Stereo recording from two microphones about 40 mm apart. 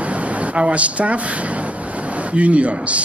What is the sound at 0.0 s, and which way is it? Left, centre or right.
Speech, right.